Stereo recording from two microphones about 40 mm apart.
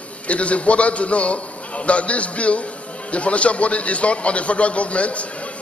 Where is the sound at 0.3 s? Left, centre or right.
Left.